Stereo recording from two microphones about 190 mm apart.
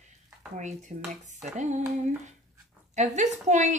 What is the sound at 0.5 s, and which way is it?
Speech, 40° right (ahead or behind).